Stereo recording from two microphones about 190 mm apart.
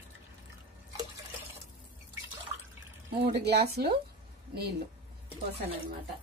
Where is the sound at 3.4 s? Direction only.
60° right (ahead or behind).